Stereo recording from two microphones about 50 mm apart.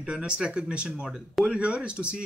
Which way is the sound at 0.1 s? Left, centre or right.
Centre.